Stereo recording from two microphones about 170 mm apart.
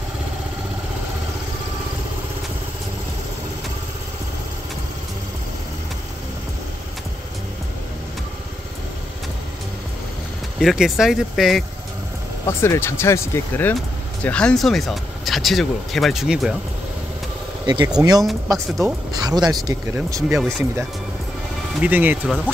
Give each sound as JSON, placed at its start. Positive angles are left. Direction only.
{"t": 10.6, "sound": "speech", "side_deg": 0}
{"t": 12.4, "sound": "speech", "side_deg": 15}
{"t": 17.6, "sound": "speech", "side_deg": -25}
{"t": 20.2, "sound": "speech", "side_deg": -5}
{"t": 21.7, "sound": "speech", "side_deg": -10}